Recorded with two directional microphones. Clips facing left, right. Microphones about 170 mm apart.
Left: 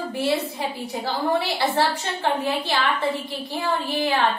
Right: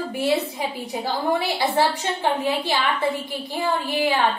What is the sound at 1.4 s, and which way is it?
A woman's voice, 15° right (ahead or behind).